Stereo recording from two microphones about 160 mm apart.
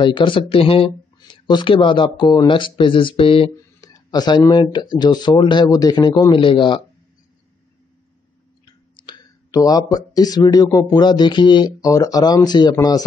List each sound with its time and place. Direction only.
0.0 s speech: 30° left (ahead or behind)
8.9 s speech: 30° left (ahead or behind)